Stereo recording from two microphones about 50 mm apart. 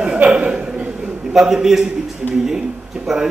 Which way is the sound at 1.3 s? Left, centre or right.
Centre.